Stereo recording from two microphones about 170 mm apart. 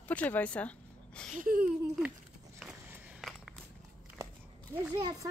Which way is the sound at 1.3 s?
55° right (ahead or behind).